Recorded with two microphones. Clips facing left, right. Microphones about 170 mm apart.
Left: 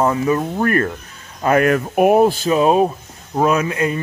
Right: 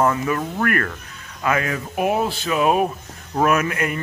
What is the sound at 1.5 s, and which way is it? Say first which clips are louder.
Speech: left 9 dB; 60° left (ahead or behind).